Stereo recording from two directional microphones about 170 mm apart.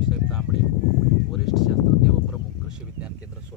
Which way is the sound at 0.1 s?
5° right (ahead or behind).